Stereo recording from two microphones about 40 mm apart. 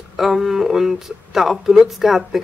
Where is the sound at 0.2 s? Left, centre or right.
Centre.